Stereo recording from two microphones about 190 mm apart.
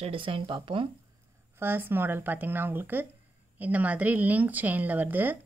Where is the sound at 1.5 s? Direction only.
10° right (ahead or behind).